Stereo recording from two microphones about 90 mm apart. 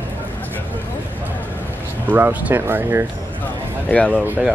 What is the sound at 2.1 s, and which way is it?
Speech, 20° right (ahead or behind).